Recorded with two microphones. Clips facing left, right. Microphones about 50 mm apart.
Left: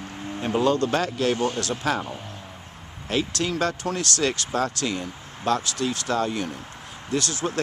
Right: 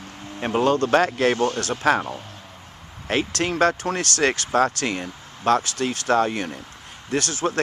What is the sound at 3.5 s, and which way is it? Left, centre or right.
Speech, right.